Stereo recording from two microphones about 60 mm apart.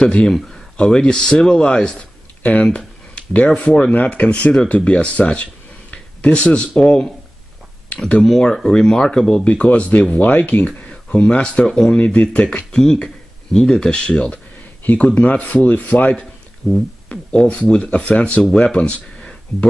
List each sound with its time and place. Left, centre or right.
0.0 s speech: centre
2.4 s speech: left
8.2 s speech: centre
9.5 s speech: left
16.6 s speech: centre
17.1 s speech: centre